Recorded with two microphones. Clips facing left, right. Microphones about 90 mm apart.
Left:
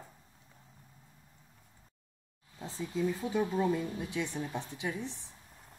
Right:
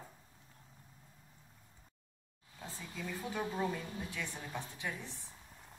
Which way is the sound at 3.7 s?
20° left (ahead or behind).